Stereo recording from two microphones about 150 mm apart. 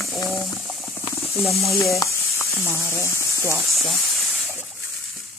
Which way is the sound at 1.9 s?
20° left (ahead or behind).